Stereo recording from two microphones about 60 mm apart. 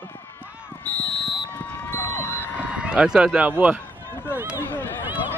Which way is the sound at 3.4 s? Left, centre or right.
Right.